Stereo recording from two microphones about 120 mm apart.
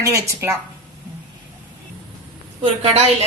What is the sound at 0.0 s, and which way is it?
Speech, 25° right (ahead or behind).